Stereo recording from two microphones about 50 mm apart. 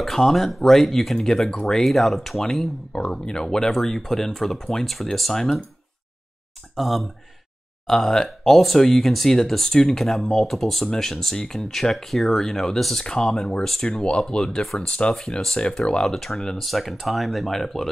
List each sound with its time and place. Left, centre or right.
0.0 s speech: centre
2.9 s speech: centre
6.8 s speech: centre